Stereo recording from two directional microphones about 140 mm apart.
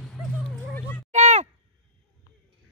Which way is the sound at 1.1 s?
55° right (ahead or behind).